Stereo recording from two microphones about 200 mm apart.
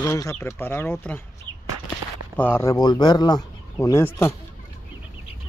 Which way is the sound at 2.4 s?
10° left (ahead or behind).